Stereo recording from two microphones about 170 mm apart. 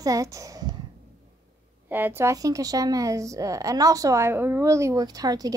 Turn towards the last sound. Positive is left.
turn(degrees=-20)  # may be behind; listen again after turning